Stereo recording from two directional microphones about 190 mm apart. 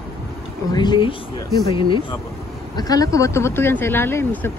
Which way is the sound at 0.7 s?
25° left (ahead or behind).